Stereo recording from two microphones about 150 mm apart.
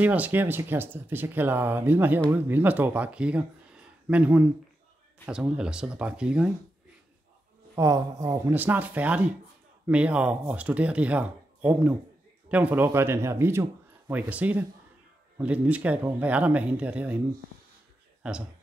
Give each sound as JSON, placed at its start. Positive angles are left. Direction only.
{"t": 0.0, "sound": "speech", "side_deg": -10}
{"t": 7.7, "sound": "speech", "side_deg": -20}
{"t": 18.2, "sound": "speech", "side_deg": -5}